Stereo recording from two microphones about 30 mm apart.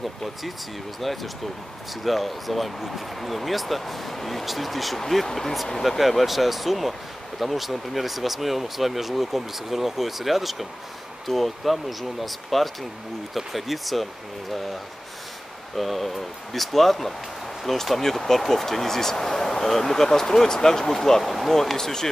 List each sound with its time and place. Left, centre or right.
1.0 s speech: centre
4.9 s speech: centre
5.9 s speech: centre
15.7 s speech: centre
21.2 s speech: centre
21.5 s speech: centre